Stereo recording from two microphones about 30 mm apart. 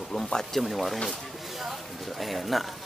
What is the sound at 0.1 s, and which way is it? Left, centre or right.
Speech, left.